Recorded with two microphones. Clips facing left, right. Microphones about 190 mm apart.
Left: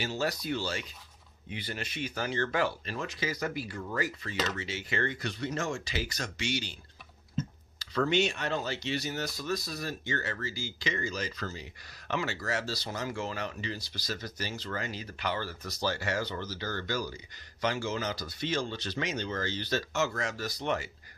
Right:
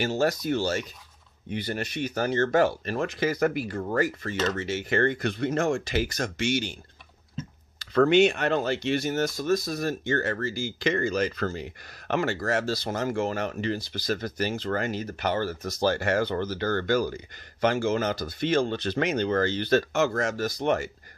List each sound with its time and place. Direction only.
0.0 s speech: 50° right (ahead or behind)
7.8 s speech: 55° right (ahead or behind)